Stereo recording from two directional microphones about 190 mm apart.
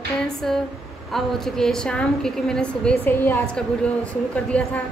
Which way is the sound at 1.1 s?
Centre (ahead or behind).